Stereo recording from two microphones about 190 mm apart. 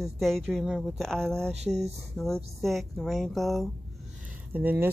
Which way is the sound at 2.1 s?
Centre (ahead or behind).